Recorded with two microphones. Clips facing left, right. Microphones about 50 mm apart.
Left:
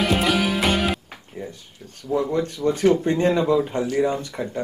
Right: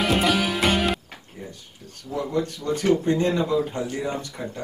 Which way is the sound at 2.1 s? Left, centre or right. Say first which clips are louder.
Left 3 dB; left.